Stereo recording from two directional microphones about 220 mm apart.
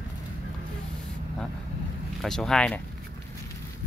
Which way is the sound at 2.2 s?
Centre (ahead or behind).